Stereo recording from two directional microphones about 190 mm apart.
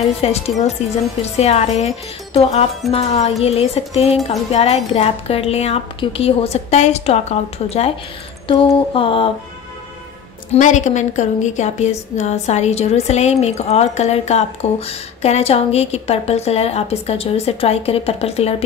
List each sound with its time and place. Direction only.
0.2 s a woman's voice: 35° left (ahead or behind)
2.9 s a woman's voice: 35° left (ahead or behind)
8.5 s a sound: 25° left (ahead or behind)
10.5 s a woman's voice: 40° left (ahead or behind)